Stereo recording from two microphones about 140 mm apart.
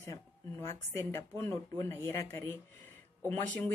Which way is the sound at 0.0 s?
20° left (ahead or behind).